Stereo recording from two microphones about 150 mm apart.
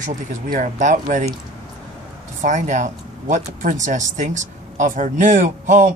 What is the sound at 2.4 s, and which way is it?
Speech, 55° right (ahead or behind).